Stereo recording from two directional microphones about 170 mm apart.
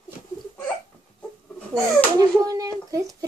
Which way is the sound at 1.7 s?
20° right (ahead or behind).